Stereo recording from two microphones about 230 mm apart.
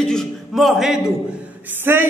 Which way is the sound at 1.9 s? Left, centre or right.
Centre.